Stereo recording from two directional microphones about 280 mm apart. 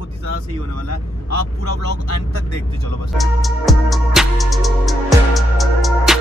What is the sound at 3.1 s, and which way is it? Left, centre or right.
Music, centre.